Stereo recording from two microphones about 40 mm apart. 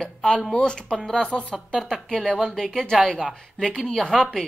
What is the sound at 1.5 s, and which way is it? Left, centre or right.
Speech, centre.